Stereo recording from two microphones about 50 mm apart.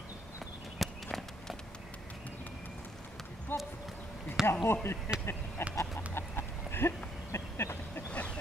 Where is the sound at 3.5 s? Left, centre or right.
Left.